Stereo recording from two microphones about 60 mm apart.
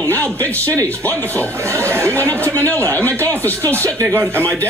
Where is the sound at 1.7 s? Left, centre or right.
Right.